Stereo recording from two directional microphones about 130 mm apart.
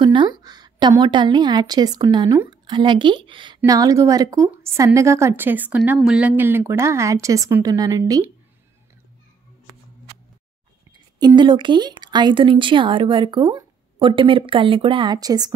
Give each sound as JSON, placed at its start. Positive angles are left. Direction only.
{"t": 0.0, "sound": "a woman's voice", "side_deg": -40}
{"t": 3.6, "sound": "a woman's voice", "side_deg": -25}
{"t": 11.1, "sound": "speech", "side_deg": -35}
{"t": 15.1, "sound": "a woman's voice", "side_deg": -30}